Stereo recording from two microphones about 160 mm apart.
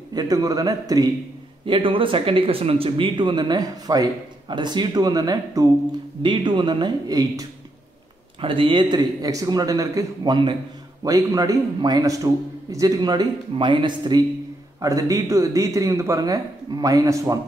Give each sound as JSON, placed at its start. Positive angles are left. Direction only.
{"t": 0.1, "sound": "speech", "side_deg": -25}
{"t": 8.4, "sound": "speech", "side_deg": -35}